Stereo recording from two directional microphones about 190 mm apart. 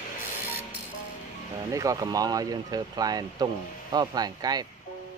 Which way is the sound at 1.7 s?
15° right (ahead or behind).